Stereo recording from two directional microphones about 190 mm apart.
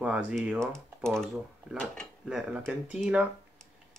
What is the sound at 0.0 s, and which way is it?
Speech, 5° right (ahead or behind).